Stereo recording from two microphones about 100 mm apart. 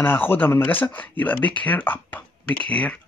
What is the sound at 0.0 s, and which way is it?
Speech, 20° left (ahead or behind).